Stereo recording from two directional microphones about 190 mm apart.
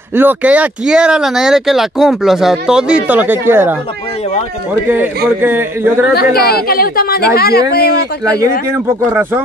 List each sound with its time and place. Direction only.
0.1 s speech: 10° right (ahead or behind)
4.8 s speech: 10° right (ahead or behind)
6.1 s speech: 55° left (ahead or behind)
8.4 s speech: 15° right (ahead or behind)